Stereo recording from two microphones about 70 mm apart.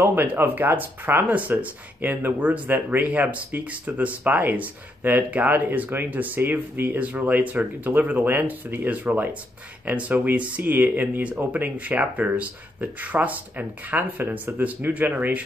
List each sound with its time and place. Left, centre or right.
0.0 s speech: right